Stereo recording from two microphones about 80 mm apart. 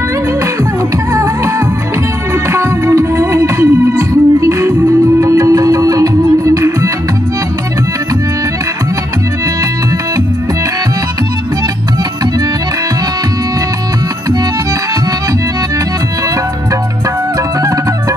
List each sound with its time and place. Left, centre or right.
1.1 s music: right
2.5 s music: right